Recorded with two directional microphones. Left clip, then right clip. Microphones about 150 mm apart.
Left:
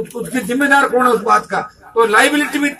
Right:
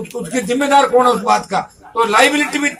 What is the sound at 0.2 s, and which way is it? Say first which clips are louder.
A man's voice: even; 10° right (ahead or behind).